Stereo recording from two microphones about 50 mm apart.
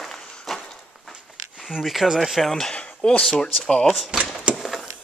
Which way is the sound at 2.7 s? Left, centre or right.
Left.